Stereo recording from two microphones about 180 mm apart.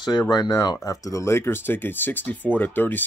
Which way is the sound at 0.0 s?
25° left (ahead or behind).